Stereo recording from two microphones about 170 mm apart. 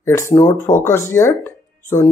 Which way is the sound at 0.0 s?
15° left (ahead or behind).